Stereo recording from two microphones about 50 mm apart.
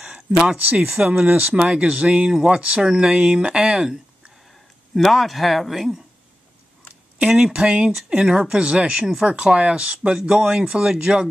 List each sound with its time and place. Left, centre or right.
0.0 s a sound: centre
0.9 s speech: right
4.9 s speech: centre
7.2 s speech: centre
8.3 s speech: centre